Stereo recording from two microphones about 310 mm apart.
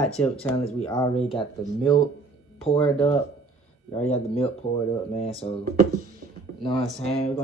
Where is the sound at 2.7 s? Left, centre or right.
Centre.